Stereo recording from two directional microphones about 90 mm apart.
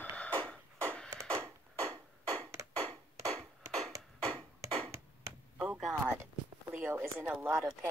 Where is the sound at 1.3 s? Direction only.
40° right (ahead or behind).